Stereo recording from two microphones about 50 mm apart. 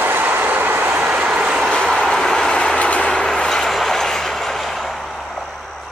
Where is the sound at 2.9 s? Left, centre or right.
Left.